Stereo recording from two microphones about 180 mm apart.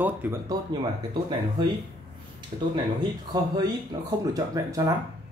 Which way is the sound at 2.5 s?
35° right (ahead or behind).